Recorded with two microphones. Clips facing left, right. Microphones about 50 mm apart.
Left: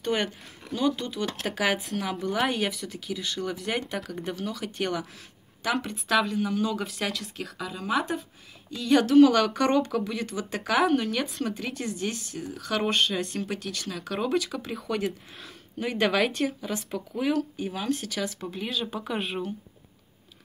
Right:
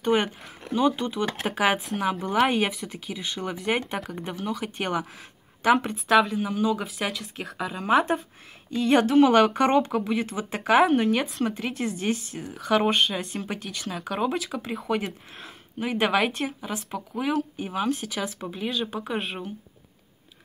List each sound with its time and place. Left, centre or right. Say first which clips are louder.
0.0 s speech: right 4 dB; right
6.1 s speech: right 3 dB; centre
7.3 s a woman's voice: right 3 dB; right